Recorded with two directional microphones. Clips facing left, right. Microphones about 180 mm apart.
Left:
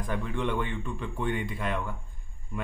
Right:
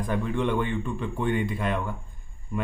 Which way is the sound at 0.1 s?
40° right (ahead or behind).